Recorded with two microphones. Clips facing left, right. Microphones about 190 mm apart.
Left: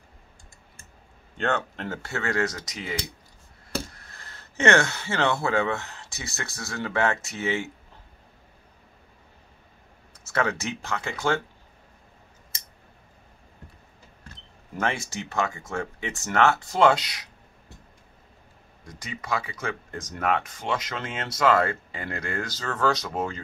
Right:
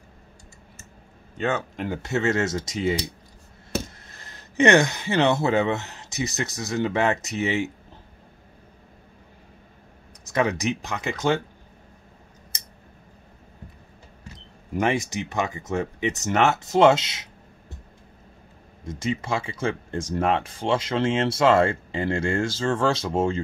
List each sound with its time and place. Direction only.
1.4 s speech: 10° right (ahead or behind)
10.2 s speech: 15° right (ahead or behind)
14.8 s speech: 15° right (ahead or behind)
18.9 s speech: 25° right (ahead or behind)